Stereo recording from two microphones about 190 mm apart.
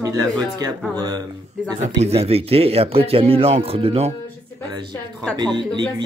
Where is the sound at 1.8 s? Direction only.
35° right (ahead or behind).